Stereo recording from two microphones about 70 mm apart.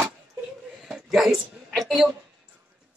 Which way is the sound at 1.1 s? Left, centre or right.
Centre.